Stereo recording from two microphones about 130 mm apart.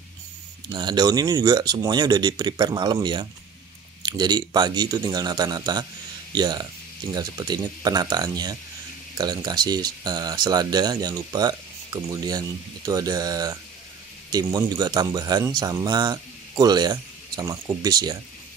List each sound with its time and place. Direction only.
0.7 s speech: 35° right (ahead or behind)